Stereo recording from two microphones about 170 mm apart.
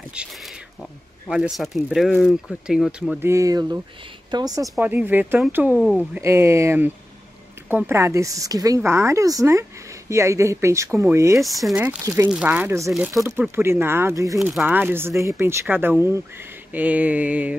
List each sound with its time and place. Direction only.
1.3 s speech: centre (ahead or behind)
6.2 s speech: 15° right (ahead or behind)
11.4 s speech: centre (ahead or behind)
12.0 s speech: 20° right (ahead or behind)
12.3 s speech: 5° right (ahead or behind)
12.9 s speech: centre (ahead or behind)
13.2 s speech: 15° right (ahead or behind)